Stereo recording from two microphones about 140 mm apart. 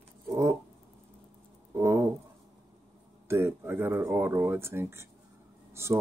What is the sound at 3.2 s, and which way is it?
Speech, 15° right (ahead or behind).